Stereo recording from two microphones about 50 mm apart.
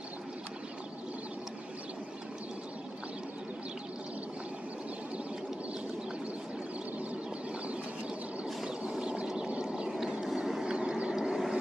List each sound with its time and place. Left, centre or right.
9.5 s a sound: centre
10.2 s vehicle: centre
11.1 s vehicle: centre